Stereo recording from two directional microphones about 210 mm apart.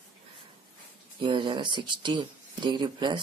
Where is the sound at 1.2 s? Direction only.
25° right (ahead or behind).